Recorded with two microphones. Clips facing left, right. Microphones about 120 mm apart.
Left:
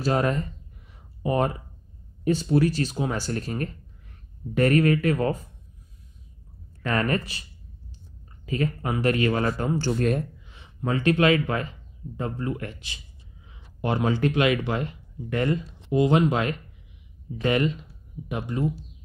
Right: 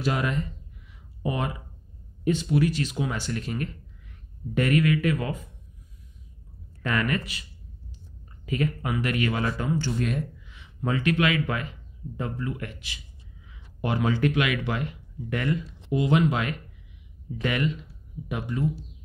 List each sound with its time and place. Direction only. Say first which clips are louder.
0.0 s a sound: left 3 dB; 40° left (ahead or behind)
2.2 s speech: left 2 dB; 35° left (ahead or behind)
6.9 s speech: left 2 dB; 35° left (ahead or behind)
8.5 s speech: left 1 dB; 35° left (ahead or behind)